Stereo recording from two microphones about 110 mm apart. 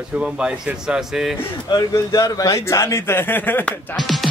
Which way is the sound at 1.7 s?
35° left (ahead or behind).